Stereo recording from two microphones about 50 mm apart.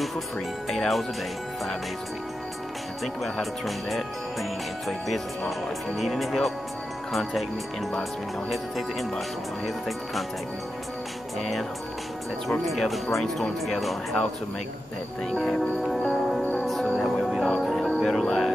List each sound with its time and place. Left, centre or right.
0.7 s speech: centre
3.3 s speech: centre
12.4 s speech: centre
15.8 s music: centre
18.1 s speech: centre